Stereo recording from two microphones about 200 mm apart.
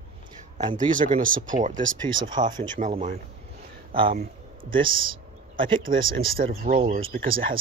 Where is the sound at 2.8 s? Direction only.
35° right (ahead or behind).